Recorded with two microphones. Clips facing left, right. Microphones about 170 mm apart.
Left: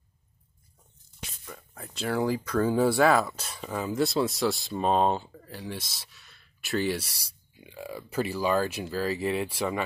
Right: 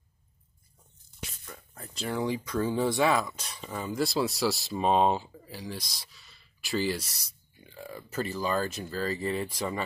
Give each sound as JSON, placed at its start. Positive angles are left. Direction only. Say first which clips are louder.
{"t": 1.4, "sound": "speech", "louder": "left 2 dB", "side_deg": 0}
{"t": 7.6, "sound": "speech", "louder": "left 4 dB", "side_deg": 10}